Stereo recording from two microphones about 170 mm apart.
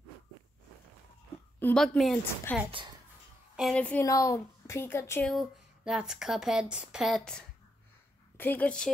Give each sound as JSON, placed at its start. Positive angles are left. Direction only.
{"t": 1.6, "sound": "a woman's voice", "side_deg": 5}
{"t": 4.0, "sound": "speech", "side_deg": 20}
{"t": 5.2, "sound": "speech", "side_deg": 0}